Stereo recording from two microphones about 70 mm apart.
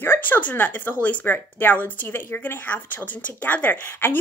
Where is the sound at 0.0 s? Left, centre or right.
Left.